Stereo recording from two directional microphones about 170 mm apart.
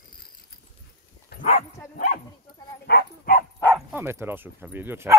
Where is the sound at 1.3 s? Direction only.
70° left (ahead or behind).